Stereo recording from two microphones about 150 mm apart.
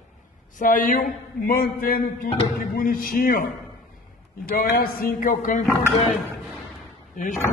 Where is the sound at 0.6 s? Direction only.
65° left (ahead or behind).